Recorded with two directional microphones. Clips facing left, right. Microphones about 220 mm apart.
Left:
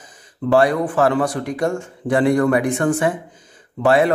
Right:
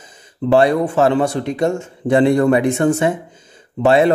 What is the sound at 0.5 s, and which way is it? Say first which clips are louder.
Speech: right 2 dB; 25° right (ahead or behind).